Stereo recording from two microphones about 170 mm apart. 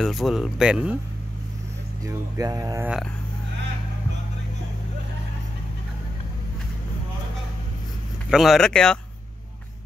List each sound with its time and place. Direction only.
0.0 s speech: centre (ahead or behind)
2.0 s speech: 20° right (ahead or behind)
8.3 s speech: centre (ahead or behind)